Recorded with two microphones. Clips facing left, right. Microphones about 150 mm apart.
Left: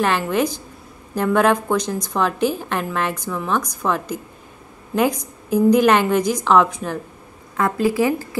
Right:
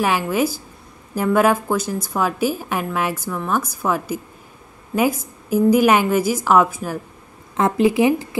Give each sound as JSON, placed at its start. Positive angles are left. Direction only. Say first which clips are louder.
{"t": 0.0, "sound": "a woman's voice", "louder": "even", "side_deg": -10}
{"t": 7.5, "sound": "speech", "louder": "right 2 dB", "side_deg": -20}